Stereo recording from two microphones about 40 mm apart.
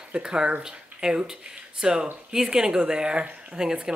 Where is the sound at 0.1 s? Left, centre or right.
Right.